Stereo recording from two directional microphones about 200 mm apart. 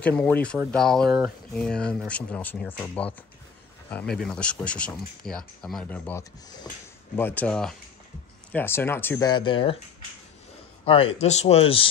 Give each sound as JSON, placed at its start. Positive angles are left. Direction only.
{"t": 0.0, "sound": "speech", "side_deg": 5}
{"t": 9.3, "sound": "speech", "side_deg": 25}
{"t": 10.9, "sound": "speech", "side_deg": 30}